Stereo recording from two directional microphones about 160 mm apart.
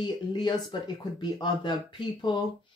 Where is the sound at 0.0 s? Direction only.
30° left (ahead or behind).